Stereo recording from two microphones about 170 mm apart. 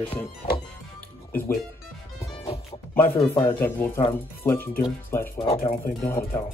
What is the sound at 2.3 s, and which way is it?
Music, 35° left (ahead or behind).